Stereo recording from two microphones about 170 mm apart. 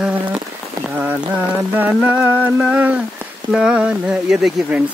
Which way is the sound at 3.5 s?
5° right (ahead or behind).